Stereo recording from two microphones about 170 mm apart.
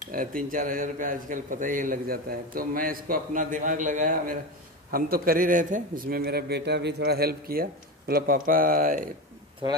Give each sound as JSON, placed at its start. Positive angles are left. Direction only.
{"t": 0.1, "sound": "a man's voice", "side_deg": -55}
{"t": 9.6, "sound": "speech", "side_deg": -30}